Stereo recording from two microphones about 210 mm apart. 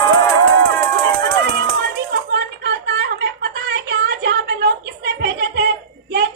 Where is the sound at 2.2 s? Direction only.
55° right (ahead or behind).